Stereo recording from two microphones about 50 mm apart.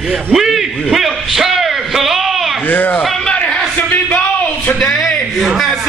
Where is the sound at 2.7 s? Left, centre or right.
Left.